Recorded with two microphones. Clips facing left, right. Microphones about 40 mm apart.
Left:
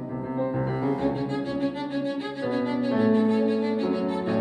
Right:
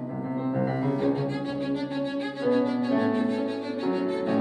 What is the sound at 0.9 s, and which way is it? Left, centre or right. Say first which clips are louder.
Cello: even; left.